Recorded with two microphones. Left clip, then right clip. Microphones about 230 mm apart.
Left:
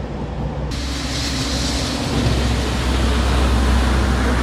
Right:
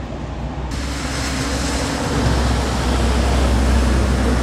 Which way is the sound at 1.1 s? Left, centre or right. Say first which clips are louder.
Even; right.